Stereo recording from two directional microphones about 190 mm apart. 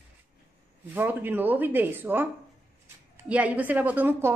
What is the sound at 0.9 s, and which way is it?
A woman's voice, 10° right (ahead or behind).